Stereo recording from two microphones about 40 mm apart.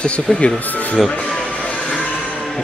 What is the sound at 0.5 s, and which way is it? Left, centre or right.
Speech, left.